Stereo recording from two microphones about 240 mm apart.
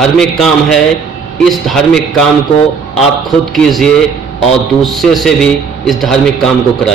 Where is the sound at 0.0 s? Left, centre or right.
Centre.